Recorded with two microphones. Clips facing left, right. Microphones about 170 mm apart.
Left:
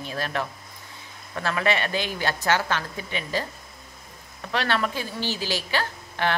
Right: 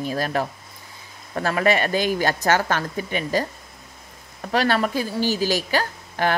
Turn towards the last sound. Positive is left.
turn(degrees=-40)  # may be behind; listen again after turning